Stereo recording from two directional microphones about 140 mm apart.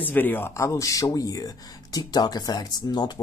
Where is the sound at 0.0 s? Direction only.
15° left (ahead or behind).